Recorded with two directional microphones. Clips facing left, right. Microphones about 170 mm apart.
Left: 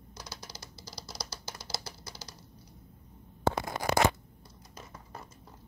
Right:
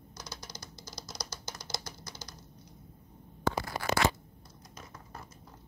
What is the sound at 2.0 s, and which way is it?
Typing, 10° left (ahead or behind).